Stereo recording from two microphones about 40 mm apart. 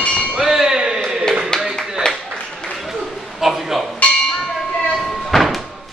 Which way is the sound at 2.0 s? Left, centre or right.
Left.